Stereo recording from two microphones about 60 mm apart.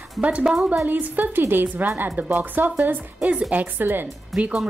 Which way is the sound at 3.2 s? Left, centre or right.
Centre.